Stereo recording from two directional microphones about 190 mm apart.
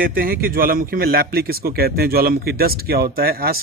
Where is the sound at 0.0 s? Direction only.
50° right (ahead or behind).